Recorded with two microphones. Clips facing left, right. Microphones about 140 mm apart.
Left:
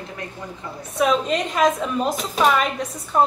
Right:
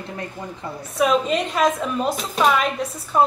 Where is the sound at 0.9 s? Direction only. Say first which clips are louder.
Right 1 dB; centre (ahead or behind).